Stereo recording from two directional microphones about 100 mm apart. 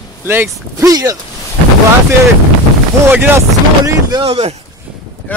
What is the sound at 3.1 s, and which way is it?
Speech, 20° right (ahead or behind).